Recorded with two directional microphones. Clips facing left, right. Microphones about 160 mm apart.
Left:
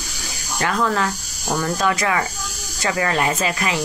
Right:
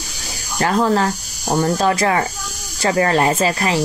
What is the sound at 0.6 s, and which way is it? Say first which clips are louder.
Speech: right 4 dB; 35° right (ahead or behind).